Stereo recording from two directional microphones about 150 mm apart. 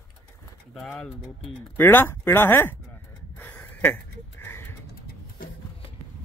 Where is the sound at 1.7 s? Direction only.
15° left (ahead or behind).